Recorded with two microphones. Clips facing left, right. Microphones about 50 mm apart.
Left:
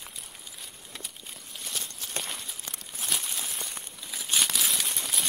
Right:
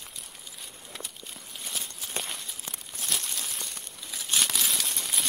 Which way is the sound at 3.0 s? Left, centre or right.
Centre.